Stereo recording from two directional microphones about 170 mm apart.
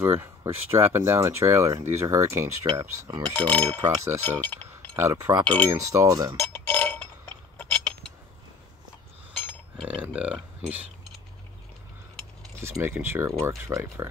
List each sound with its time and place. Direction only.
0.0 s speech: 15° right (ahead or behind)
3.3 s cutlery: 5° left (ahead or behind)
3.8 s speech: 20° right (ahead or behind)
4.2 s chink: 10° left (ahead or behind)
4.9 s speech: 15° right (ahead or behind)
6.7 s burping: 5° left (ahead or behind)
9.8 s speech: 5° right (ahead or behind)
12.5 s speech: 15° right (ahead or behind)